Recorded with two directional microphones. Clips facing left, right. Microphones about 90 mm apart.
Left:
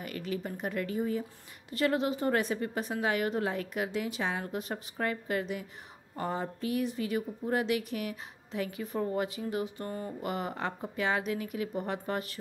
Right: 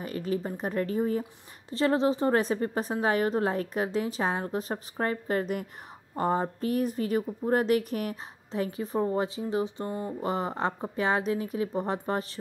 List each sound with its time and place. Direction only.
0.0 s a woman's voice: 35° right (ahead or behind)